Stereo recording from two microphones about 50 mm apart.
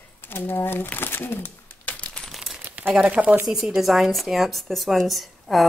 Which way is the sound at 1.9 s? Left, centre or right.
Left.